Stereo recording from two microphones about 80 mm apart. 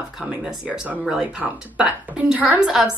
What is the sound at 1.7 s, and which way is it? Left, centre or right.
A woman's voice, centre.